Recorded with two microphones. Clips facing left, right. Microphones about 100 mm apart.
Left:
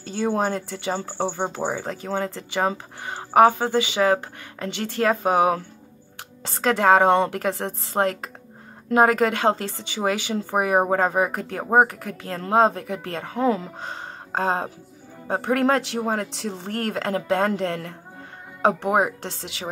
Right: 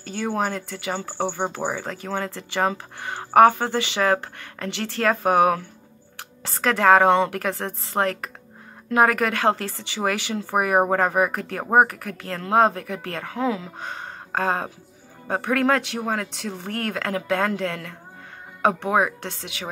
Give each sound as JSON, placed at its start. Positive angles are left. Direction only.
{"t": 0.0, "sound": "speech", "side_deg": 25}
{"t": 14.3, "sound": "speech", "side_deg": 25}